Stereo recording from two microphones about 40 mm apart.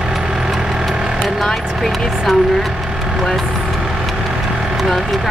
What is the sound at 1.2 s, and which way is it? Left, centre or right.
Speech, centre.